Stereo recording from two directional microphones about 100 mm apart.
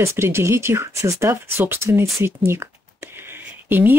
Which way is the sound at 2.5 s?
25° right (ahead or behind).